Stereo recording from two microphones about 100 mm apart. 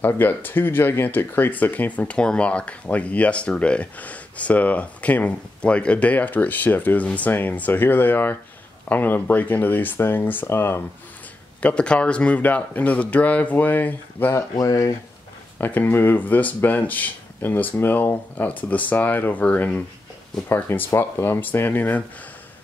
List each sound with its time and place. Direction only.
0.0 s speech: 20° left (ahead or behind)
11.6 s speech: 10° left (ahead or behind)
14.6 s speech: 35° left (ahead or behind)
15.6 s speech: 20° left (ahead or behind)